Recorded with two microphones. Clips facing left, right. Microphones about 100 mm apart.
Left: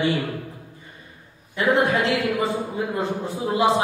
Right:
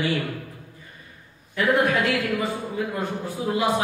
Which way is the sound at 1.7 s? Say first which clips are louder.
Left 2 dB; 25° left (ahead or behind).